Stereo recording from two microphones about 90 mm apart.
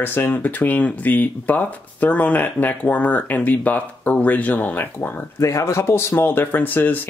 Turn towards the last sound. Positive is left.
turn(degrees=20)  # may be behind; listen again after turning